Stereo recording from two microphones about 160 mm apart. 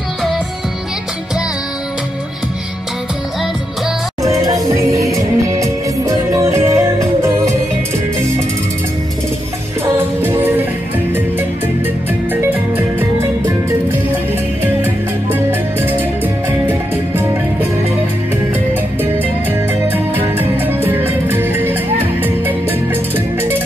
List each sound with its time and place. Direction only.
4.2 s music: 20° right (ahead or behind)
9.8 s music: 15° right (ahead or behind)
12.1 s music: 10° right (ahead or behind)
15.3 s music: 15° right (ahead or behind)
19.9 s music: 10° right (ahead or behind)